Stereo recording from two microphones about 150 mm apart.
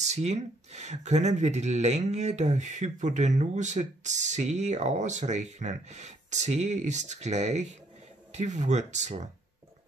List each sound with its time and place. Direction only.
0.0 s speech: 45° right (ahead or behind)